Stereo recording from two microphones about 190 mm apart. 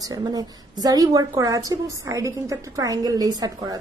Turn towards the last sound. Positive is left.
turn(degrees=-20)  # may be behind; listen again after turning